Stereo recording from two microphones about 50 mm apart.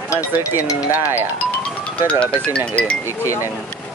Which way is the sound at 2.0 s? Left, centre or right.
Left.